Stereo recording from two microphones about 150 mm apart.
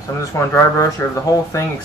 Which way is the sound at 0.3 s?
20° left (ahead or behind).